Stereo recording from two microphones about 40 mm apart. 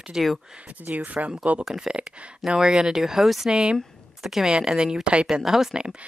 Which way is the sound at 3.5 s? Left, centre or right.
Right.